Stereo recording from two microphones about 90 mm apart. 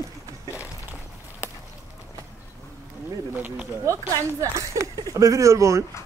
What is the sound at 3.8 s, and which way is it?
Speech, 35° right (ahead or behind).